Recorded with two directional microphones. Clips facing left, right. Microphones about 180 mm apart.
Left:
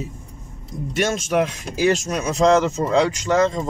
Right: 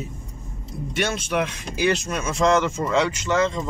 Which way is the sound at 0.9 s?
45° left (ahead or behind).